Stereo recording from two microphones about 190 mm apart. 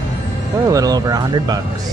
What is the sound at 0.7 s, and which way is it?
Music, 20° right (ahead or behind).